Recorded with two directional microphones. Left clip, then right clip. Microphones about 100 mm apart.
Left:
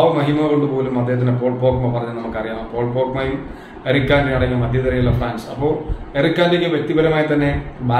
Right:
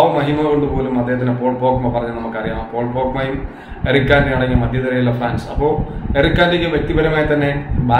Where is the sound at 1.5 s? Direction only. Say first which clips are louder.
Right 3 dB; 15° right (ahead or behind).